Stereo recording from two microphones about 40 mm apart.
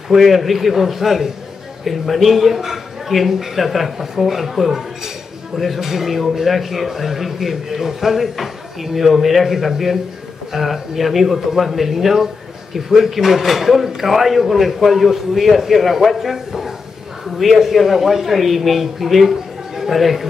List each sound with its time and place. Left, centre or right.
0.1 s a man's voice: centre